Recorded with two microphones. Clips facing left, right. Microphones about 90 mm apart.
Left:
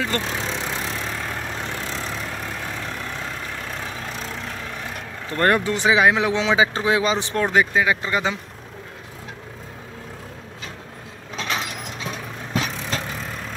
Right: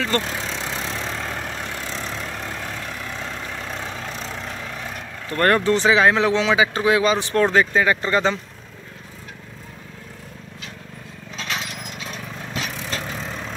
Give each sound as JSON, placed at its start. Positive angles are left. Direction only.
{"t": 0.0, "sound": "speech", "side_deg": 15}
{"t": 0.5, "sound": "vehicle", "side_deg": 15}
{"t": 3.6, "sound": "vehicle", "side_deg": 5}
{"t": 5.3, "sound": "speech", "side_deg": 15}
{"t": 13.1, "sound": "vehicle", "side_deg": 0}